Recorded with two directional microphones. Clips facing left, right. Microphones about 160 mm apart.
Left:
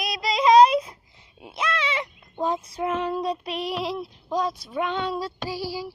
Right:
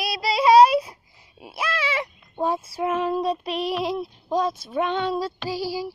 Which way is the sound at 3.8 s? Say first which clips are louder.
Right 3 dB; 20° right (ahead or behind).